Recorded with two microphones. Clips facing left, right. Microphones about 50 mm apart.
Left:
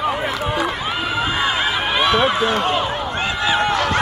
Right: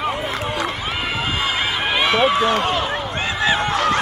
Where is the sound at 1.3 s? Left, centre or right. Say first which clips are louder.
Left 2 dB; centre.